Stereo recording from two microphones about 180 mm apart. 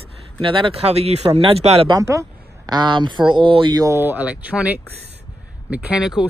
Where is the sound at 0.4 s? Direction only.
30° right (ahead or behind).